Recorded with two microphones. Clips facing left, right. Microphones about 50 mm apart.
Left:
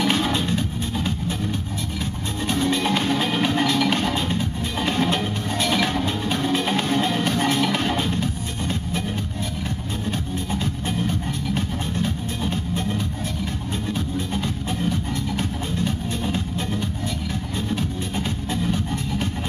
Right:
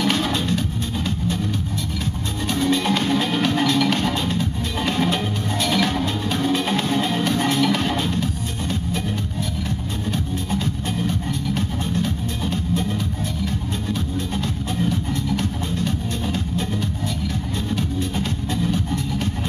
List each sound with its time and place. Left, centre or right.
0.0 s music: centre
2.5 s music: centre
10.5 s music: centre
13.9 s music: centre
17.6 s music: centre